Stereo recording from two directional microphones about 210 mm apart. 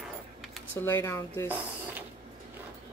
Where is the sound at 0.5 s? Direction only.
10° left (ahead or behind).